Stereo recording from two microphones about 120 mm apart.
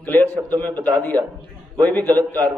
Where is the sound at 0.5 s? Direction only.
35° right (ahead or behind).